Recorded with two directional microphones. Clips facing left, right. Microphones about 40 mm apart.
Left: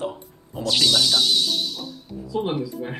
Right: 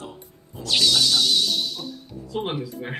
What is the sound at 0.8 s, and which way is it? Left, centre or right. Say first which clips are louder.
Music: even; centre.